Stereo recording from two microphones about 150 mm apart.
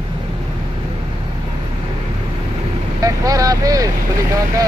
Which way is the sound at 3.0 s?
25° right (ahead or behind).